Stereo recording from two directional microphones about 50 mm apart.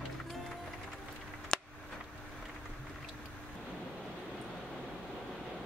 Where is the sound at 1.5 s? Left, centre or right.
Centre.